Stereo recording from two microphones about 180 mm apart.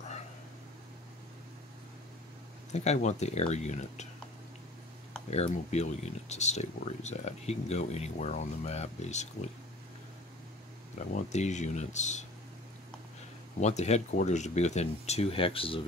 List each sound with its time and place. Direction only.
2.7 s speech: 40° left (ahead or behind)
5.3 s speech: 35° left (ahead or behind)
11.1 s speech: 40° left (ahead or behind)
13.6 s speech: 40° left (ahead or behind)